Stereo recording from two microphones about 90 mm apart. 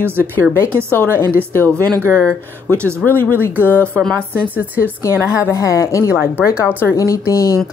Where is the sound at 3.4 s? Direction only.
20° right (ahead or behind).